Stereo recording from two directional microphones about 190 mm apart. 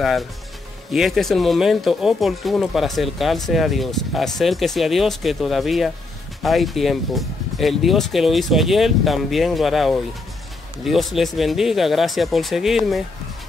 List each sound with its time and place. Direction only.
0.9 s speech: centre (ahead or behind)